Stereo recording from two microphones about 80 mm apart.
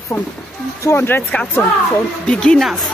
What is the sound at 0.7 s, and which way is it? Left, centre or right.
Speech, left.